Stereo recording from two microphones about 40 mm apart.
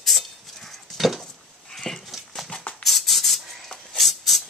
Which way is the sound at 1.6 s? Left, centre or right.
Centre.